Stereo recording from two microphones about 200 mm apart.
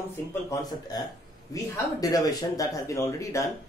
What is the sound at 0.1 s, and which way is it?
Speech, 15° left (ahead or behind).